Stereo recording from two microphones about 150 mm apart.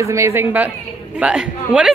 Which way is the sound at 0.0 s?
20° right (ahead or behind).